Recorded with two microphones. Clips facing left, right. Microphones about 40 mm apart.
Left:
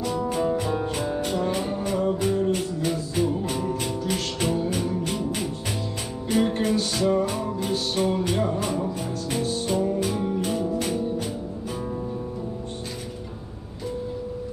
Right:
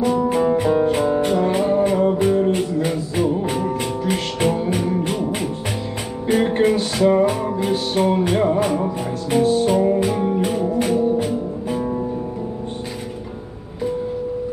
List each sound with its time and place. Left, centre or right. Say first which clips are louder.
0.0 s music: right 7 dB; right
6.2 s music: right 6 dB; right